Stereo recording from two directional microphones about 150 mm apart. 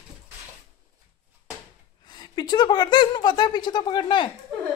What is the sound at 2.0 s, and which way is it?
A woman's voice, 30° left (ahead or behind).